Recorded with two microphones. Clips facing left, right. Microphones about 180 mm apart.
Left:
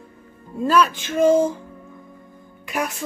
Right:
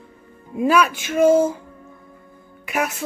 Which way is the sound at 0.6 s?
10° right (ahead or behind).